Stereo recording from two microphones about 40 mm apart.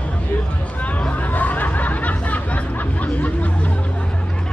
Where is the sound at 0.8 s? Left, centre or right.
Left.